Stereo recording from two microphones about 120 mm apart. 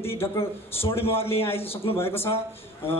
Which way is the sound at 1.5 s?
55° left (ahead or behind).